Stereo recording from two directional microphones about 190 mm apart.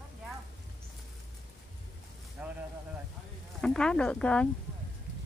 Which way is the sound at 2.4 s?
5° right (ahead or behind).